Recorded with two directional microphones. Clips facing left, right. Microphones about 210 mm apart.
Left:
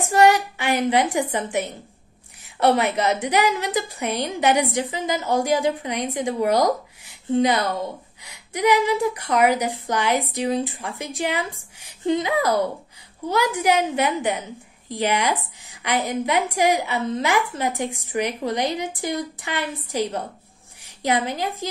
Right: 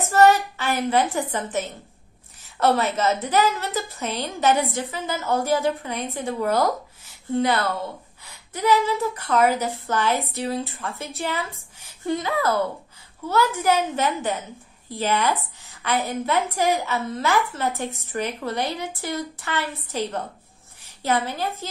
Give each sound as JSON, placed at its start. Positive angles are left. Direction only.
{"t": 0.1, "sound": "a woman's voice", "side_deg": 15}